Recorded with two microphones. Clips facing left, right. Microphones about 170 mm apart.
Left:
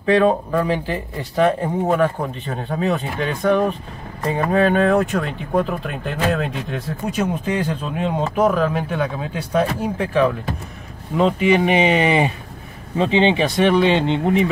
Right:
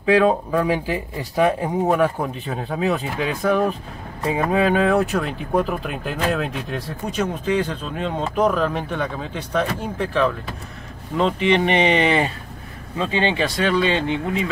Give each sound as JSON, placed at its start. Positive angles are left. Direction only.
{"t": 0.0, "sound": "speech", "side_deg": -5}